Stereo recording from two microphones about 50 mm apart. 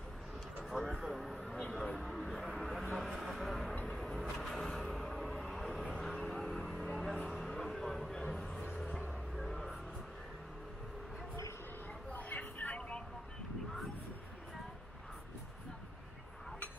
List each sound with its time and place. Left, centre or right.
0.7 s a sound: centre
2.0 s vehicle: centre
2.9 s a sound: centre
3.8 s vehicle: centre
4.1 s music: centre
6.2 s vehicle: centre
7.2 s a sound: centre
8.2 s music: centre
12.1 s vehicle: left